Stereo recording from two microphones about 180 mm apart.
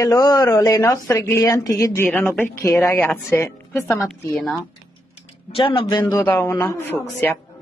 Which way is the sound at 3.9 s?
5° left (ahead or behind).